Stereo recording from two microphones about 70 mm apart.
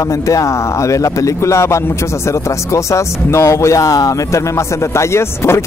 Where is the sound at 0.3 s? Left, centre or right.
Left.